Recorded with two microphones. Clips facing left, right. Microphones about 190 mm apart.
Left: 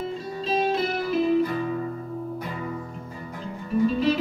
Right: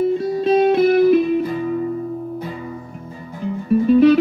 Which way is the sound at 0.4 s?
60° right (ahead or behind).